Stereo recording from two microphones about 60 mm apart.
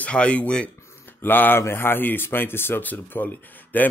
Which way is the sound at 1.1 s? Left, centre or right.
Left.